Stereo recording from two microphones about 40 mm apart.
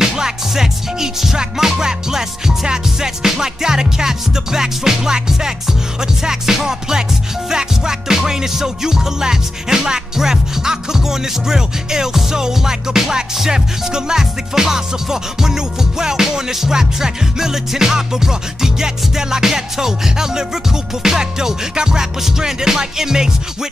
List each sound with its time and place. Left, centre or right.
0.0 s music: centre